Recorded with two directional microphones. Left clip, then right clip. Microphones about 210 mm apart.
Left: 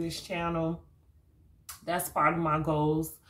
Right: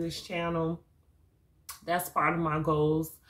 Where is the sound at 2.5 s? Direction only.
10° left (ahead or behind).